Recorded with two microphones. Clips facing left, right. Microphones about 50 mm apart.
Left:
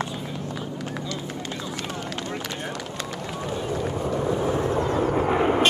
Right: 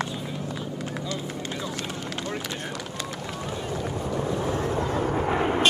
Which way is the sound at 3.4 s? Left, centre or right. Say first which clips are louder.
Left 4 dB; centre.